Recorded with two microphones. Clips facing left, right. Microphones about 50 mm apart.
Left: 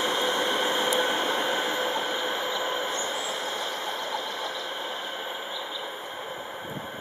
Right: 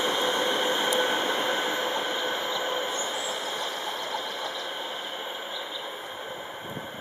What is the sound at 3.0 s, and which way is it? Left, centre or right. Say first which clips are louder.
Vehicle: left 1 dB; centre.